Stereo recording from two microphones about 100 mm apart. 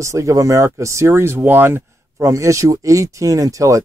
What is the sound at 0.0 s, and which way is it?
A man's voice, 30° right (ahead or behind).